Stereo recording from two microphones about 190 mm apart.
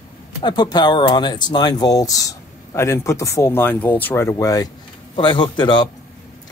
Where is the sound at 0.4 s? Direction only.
25° left (ahead or behind).